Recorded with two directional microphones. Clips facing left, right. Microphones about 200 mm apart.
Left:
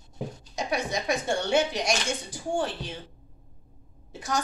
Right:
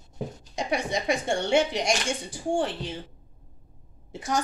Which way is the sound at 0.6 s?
25° right (ahead or behind).